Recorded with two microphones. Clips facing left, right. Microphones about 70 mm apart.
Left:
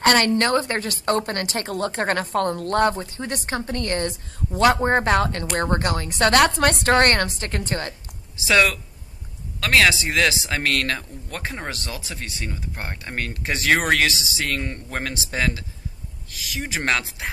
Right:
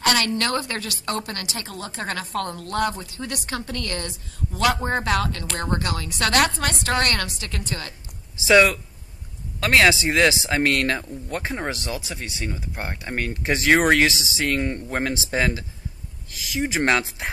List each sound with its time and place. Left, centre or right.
0.0 s a woman's voice: left
8.4 s speech: centre